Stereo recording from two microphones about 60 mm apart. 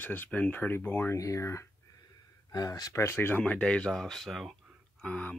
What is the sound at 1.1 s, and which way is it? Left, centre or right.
Speech, left.